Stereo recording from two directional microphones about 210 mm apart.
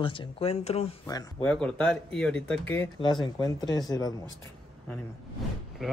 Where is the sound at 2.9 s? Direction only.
20° left (ahead or behind).